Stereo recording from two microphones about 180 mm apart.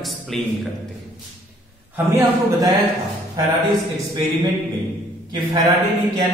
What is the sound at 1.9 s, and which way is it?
Speech, 15° right (ahead or behind).